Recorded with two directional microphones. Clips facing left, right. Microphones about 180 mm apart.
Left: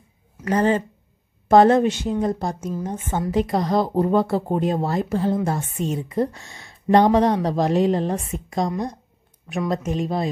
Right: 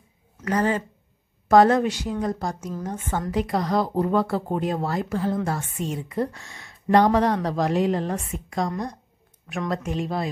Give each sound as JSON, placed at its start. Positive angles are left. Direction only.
{"t": 0.5, "sound": "a woman's voice", "side_deg": 25}